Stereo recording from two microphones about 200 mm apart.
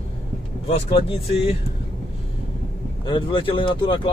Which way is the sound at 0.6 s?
30° left (ahead or behind).